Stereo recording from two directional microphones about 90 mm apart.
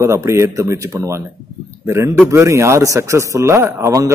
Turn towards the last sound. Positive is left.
turn(degrees=-35)  # may be behind; listen again after turning